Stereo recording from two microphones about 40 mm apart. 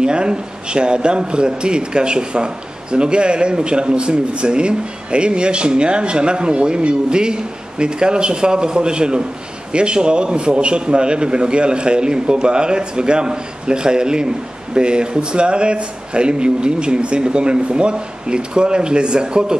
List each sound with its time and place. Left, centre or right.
0.0 s a man's voice: right